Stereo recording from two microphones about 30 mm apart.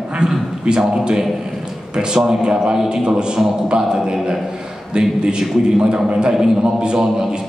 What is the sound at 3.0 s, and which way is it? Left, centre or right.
Speech, right.